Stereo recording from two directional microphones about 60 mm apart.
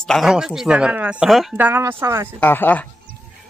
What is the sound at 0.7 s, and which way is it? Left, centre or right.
Speech, right.